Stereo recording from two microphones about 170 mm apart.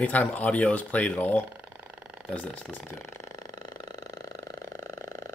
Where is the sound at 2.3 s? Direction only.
10° left (ahead or behind).